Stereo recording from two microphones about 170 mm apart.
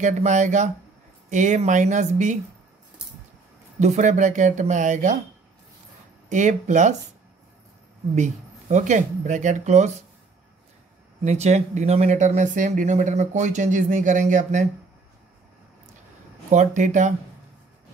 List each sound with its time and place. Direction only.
0.0 s speech: 45° right (ahead or behind)
3.8 s speech: 45° right (ahead or behind)
6.3 s speech: 45° right (ahead or behind)
8.1 s speech: 45° right (ahead or behind)
11.2 s speech: 40° right (ahead or behind)
16.5 s speech: 45° right (ahead or behind)